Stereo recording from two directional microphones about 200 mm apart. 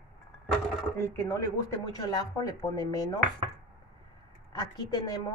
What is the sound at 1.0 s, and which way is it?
Speech, 15° left (ahead or behind).